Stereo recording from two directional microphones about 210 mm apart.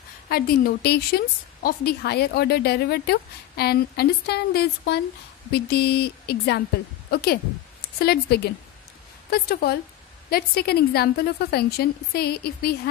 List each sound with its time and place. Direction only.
0.3 s a woman's voice: 45° left (ahead or behind)